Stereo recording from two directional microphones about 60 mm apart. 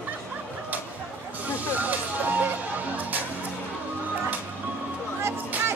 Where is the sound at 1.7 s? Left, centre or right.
Right.